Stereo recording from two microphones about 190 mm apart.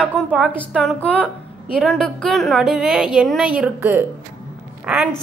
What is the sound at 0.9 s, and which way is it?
A woman's voice, 5° left (ahead or behind).